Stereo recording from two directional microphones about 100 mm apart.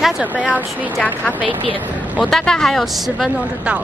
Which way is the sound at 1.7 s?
15° right (ahead or behind).